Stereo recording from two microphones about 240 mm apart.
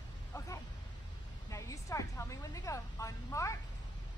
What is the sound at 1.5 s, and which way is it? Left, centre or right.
A woman's voice, centre.